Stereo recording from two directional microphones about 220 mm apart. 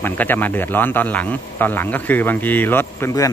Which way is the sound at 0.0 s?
10° left (ahead or behind).